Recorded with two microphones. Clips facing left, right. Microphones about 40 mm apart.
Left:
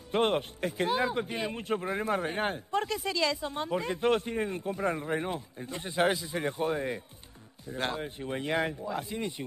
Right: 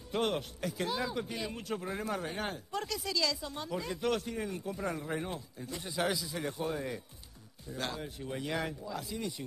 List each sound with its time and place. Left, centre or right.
0.1 s speech: left